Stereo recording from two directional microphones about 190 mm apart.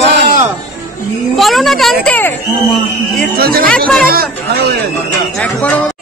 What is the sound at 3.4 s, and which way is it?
Speech, 50° right (ahead or behind).